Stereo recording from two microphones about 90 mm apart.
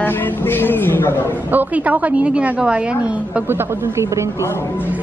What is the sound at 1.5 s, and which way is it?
A woman's voice, 15° right (ahead or behind).